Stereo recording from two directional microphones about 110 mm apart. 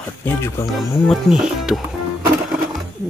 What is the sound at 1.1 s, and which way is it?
Speech, 5° right (ahead or behind).